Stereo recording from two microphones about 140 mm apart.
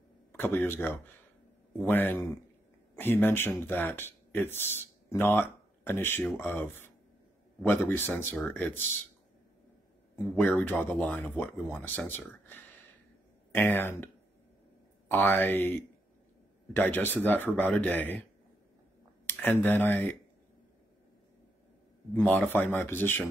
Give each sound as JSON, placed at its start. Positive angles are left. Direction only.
{"t": 0.3, "sound": "speech", "side_deg": 15}
{"t": 10.5, "sound": "speech", "side_deg": 15}
{"t": 19.2, "sound": "speech", "side_deg": 15}
{"t": 22.1, "sound": "speech", "side_deg": 15}